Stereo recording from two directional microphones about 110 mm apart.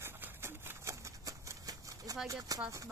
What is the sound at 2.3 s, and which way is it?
Speech, 35° right (ahead or behind).